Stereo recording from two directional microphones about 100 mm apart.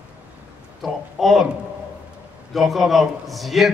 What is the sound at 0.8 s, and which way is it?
Speech, centre (ahead or behind).